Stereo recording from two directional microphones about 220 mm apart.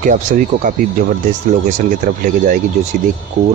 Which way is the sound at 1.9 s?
35° right (ahead or behind).